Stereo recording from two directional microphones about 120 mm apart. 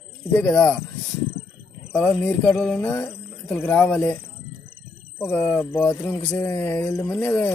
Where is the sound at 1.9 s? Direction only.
15° left (ahead or behind).